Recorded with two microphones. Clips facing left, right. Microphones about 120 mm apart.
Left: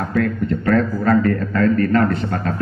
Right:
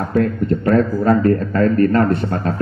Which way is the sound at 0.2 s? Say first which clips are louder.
Right 2 dB; 35° right (ahead or behind).